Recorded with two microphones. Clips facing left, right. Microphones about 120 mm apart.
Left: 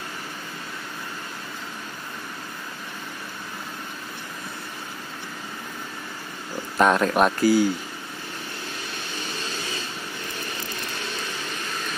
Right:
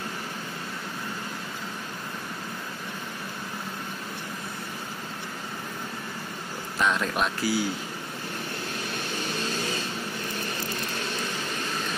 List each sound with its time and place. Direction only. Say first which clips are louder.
6.8 s speech: left 7 dB; 50° left (ahead or behind)